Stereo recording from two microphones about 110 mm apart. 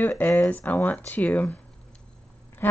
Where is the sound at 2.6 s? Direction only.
20° left (ahead or behind).